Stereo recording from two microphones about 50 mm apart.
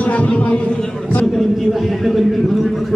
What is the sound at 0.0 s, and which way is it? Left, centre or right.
Speech, left.